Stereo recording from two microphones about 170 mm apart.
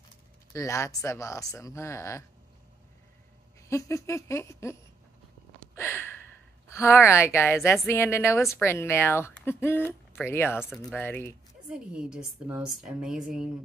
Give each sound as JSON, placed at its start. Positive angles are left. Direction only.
{"t": 0.5, "sound": "a woman's voice", "side_deg": 20}
{"t": 3.6, "sound": "a woman's voice", "side_deg": 15}
{"t": 5.8, "sound": "a sound", "side_deg": 15}
{"t": 6.7, "sound": "a woman's voice", "side_deg": 15}
{"t": 11.7, "sound": "a woman's voice", "side_deg": -5}